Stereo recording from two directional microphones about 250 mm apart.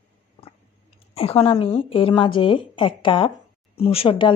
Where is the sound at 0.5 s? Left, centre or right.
Left.